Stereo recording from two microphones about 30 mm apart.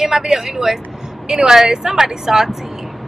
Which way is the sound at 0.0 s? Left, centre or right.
Centre.